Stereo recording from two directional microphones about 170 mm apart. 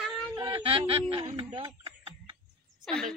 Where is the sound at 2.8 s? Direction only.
5° left (ahead or behind).